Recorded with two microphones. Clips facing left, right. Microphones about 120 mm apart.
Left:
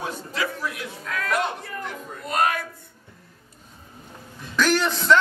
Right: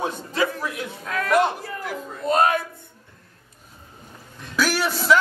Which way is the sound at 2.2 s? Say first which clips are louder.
Right 4 dB; 25° right (ahead or behind).